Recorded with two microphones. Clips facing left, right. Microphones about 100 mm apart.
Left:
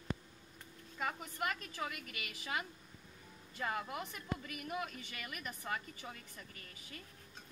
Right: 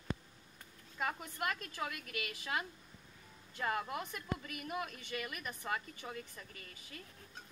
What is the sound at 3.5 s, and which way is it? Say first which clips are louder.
A woman's voice: right 2 dB; centre (ahead or behind).